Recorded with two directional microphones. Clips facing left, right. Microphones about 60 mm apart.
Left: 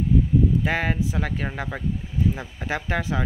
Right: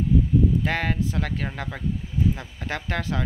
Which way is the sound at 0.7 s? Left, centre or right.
Centre.